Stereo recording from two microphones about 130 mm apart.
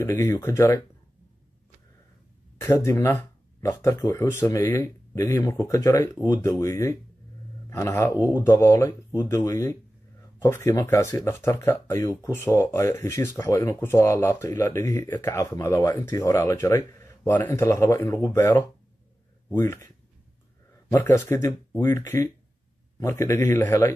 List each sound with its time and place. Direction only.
0.4 s speech: 20° left (ahead or behind)
2.6 s speech: 20° left (ahead or behind)
20.9 s speech: 20° left (ahead or behind)